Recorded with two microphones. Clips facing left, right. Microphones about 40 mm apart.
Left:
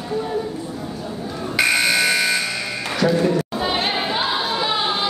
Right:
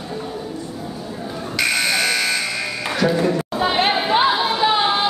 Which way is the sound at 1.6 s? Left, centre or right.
Centre.